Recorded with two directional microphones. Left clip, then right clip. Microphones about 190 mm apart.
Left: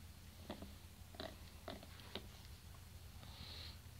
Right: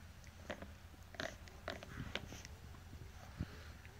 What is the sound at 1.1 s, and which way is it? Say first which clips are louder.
Pig: right 6 dB; 20° right (ahead or behind).